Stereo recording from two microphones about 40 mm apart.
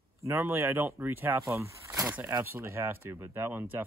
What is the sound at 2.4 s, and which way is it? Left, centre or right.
Speech, right.